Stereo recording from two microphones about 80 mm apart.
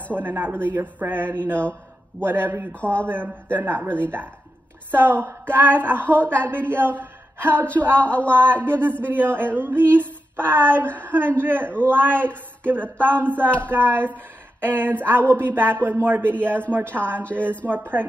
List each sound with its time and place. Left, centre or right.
0.1 s speech: right
2.7 s speech: centre
3.1 s speech: right
4.9 s speech: right
8.0 s speech: centre
8.3 s speech: right